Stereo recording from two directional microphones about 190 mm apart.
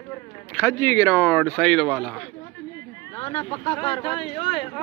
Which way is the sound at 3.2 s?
30° left (ahead or behind).